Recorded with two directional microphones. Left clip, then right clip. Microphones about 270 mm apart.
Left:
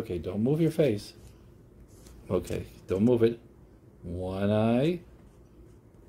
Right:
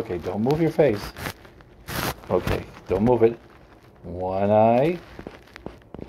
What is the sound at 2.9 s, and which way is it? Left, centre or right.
Speech, centre.